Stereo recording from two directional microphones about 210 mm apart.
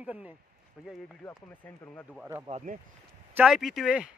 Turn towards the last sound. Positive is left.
turn(degrees=-5)  # may be behind; listen again after turning